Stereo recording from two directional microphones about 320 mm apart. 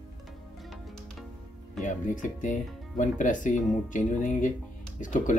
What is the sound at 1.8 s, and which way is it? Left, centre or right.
Speech, left.